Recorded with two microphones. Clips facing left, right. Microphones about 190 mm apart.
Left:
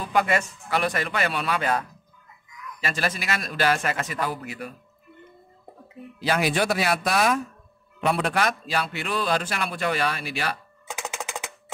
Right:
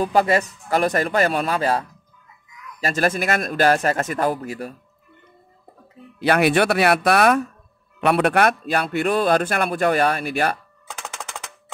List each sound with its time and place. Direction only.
0.0 s speech: 35° right (ahead or behind)
2.8 s a man's voice: 45° right (ahead or behind)
6.1 s a man's voice: 60° right (ahead or behind)
10.9 s typewriter: 10° left (ahead or behind)